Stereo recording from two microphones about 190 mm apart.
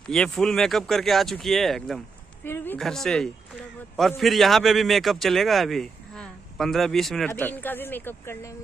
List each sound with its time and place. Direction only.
0.0 s speech: 5° left (ahead or behind)